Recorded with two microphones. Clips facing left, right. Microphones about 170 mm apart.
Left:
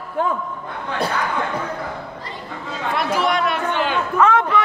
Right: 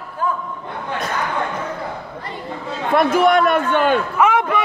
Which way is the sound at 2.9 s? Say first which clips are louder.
Right 7 dB; 50° right (ahead or behind).